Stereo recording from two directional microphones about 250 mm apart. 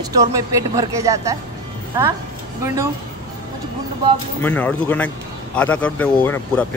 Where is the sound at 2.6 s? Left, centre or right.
Centre.